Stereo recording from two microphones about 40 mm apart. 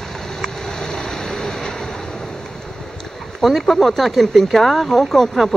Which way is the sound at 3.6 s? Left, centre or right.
Centre.